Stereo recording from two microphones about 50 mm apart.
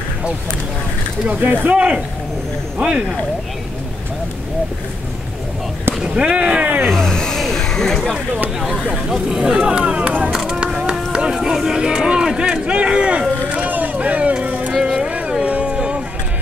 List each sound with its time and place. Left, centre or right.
1.4 s speech: right
1.8 s speech: right
5.9 s speech: centre
6.9 s a sound: centre
8.9 s speech: centre
10.3 s a sound: centre
10.7 s speech: centre
14.7 s speech: centre
15.0 s music: right
15.4 s a sound: right